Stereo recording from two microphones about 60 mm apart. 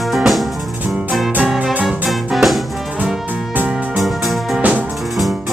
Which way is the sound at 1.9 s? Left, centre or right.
Centre.